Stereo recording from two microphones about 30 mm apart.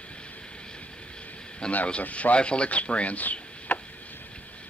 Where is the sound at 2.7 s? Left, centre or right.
Left.